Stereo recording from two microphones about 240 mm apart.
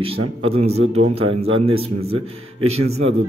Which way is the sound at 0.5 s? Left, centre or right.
Right.